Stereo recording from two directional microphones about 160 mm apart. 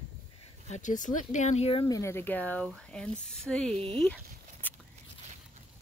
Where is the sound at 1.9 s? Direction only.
15° left (ahead or behind).